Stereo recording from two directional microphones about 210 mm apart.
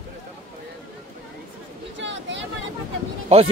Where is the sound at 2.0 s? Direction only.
60° right (ahead or behind).